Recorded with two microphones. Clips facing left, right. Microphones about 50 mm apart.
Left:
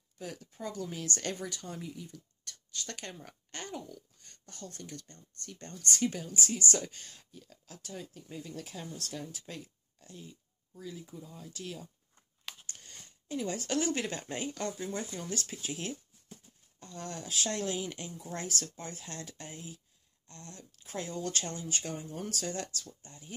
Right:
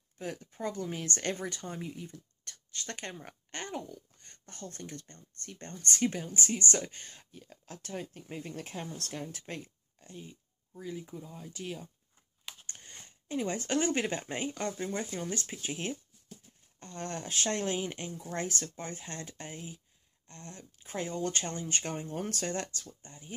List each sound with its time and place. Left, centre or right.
0.2 s speech: right
9.9 s speech: right
16.8 s speech: right